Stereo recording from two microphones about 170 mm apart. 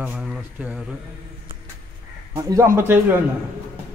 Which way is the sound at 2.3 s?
20° right (ahead or behind).